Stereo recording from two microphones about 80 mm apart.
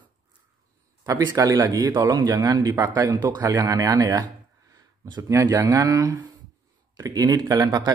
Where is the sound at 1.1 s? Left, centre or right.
Right.